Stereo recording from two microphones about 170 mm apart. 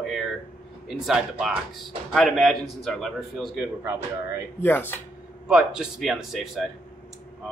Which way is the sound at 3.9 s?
15° right (ahead or behind).